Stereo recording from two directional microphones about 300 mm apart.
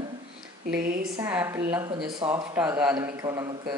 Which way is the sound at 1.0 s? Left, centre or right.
Centre.